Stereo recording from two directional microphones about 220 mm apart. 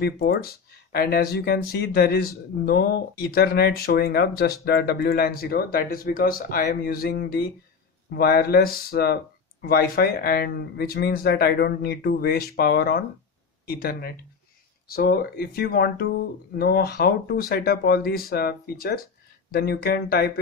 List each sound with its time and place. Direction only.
0.0 s speech: 45° left (ahead or behind)